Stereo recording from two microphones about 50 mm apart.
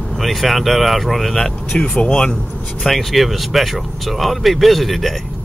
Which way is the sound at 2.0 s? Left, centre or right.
Centre.